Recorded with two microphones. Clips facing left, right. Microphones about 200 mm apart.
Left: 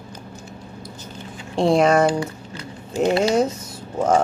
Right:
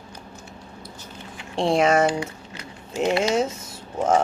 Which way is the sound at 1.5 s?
40° left (ahead or behind).